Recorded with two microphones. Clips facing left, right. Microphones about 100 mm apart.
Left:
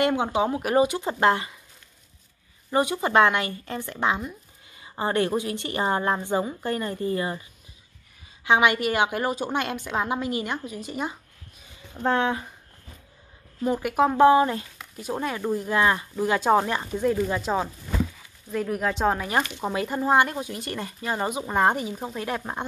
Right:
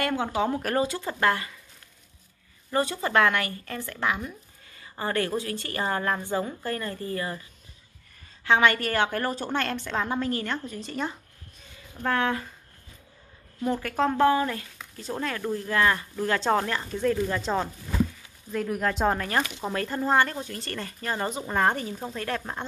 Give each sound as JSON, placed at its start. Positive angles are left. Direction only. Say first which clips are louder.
{"t": 0.0, "sound": "a woman's voice", "louder": "left 3 dB", "side_deg": 20}
{"t": 2.7, "sound": "a woman's voice", "louder": "left 3 dB", "side_deg": 15}
{"t": 8.5, "sound": "speech", "louder": "left 1 dB", "side_deg": 15}
{"t": 11.9, "sound": "a woman's voice", "louder": "left 3 dB", "side_deg": 25}
{"t": 13.7, "sound": "a woman's voice", "louder": "left 5 dB", "side_deg": 15}
{"t": 14.8, "sound": "speech", "louder": "left 3 dB", "side_deg": 10}